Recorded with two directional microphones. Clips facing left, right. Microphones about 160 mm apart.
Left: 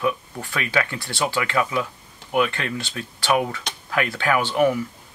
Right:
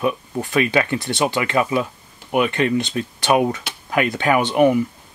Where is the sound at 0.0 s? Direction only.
20° right (ahead or behind).